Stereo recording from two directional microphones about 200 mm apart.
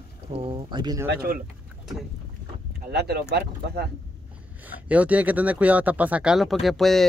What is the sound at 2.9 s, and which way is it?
Speech, 55° right (ahead or behind).